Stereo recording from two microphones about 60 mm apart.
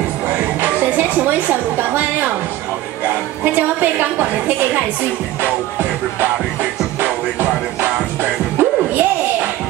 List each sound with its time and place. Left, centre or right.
0.6 s a woman's voice: right
3.5 s a woman's voice: right
5.4 s music: right